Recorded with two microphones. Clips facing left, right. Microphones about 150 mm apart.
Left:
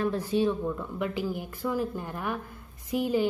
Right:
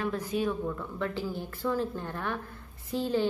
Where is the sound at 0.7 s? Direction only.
15° left (ahead or behind).